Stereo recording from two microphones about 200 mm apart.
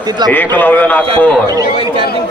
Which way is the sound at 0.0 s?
20° right (ahead or behind).